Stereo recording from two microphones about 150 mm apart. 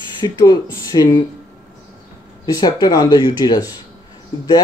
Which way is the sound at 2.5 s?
25° left (ahead or behind).